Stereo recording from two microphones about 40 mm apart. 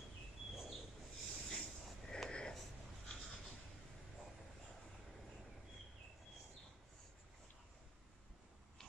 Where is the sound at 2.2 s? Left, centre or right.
Centre.